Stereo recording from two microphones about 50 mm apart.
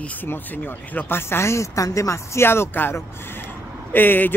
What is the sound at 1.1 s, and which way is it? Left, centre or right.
Speech, left.